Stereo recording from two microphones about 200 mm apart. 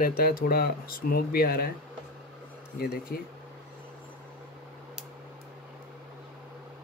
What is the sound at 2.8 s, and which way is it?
Speech, 55° left (ahead or behind).